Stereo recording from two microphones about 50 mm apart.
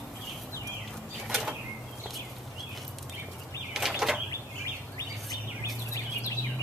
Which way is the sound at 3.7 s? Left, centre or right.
Centre.